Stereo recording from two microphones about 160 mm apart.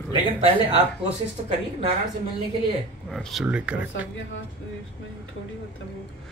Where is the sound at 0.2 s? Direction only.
35° right (ahead or behind).